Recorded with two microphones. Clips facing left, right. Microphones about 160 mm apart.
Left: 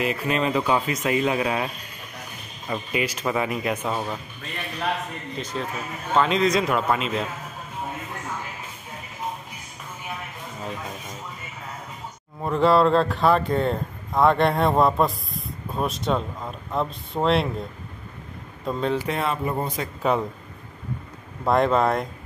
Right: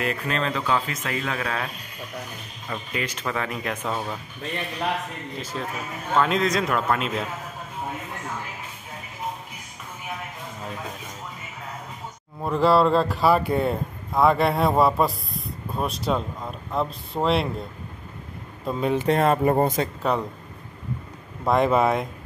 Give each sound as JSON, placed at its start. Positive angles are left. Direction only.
{"t": 0.0, "sound": "speech", "side_deg": 5}
{"t": 2.7, "sound": "speech", "side_deg": 10}
{"t": 5.4, "sound": "speech", "side_deg": -5}
{"t": 12.4, "sound": "speech", "side_deg": 0}
{"t": 18.7, "sound": "speech", "side_deg": -10}
{"t": 19.0, "sound": "speech", "side_deg": -45}
{"t": 20.0, "sound": "speech", "side_deg": 5}
{"t": 21.5, "sound": "speech", "side_deg": -5}